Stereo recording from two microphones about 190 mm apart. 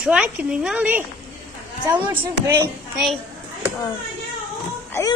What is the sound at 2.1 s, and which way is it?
Speech, 10° right (ahead or behind).